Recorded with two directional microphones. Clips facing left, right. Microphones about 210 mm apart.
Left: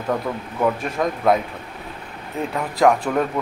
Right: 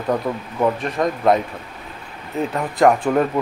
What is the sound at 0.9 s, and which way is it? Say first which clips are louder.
Speech: right 2 dB; centre (ahead or behind).